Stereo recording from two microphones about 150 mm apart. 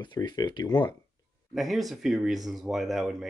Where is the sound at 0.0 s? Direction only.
30° left (ahead or behind).